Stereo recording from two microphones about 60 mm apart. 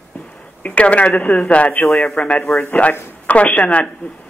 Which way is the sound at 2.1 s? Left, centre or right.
Centre.